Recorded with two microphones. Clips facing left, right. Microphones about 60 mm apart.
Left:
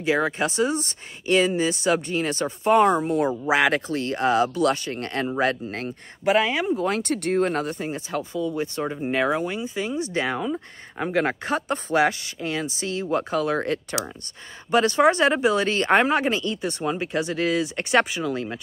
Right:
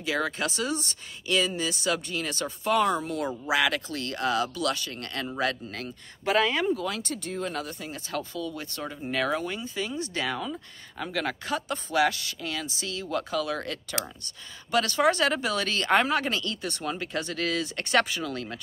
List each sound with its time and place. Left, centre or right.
0.0 s speech: left
6.2 s speech: centre
6.7 s speech: left
7.0 s speech: left
8.1 s speech: centre